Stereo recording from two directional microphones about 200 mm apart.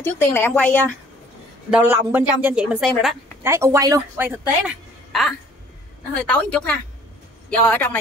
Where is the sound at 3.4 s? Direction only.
15° right (ahead or behind).